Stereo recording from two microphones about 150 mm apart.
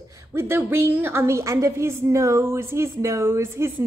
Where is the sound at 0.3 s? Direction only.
15° right (ahead or behind).